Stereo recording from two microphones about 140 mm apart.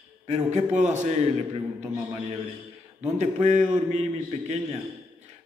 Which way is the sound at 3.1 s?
55° right (ahead or behind).